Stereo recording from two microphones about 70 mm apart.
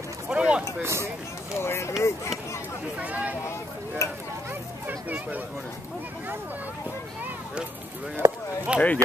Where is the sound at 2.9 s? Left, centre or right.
Right.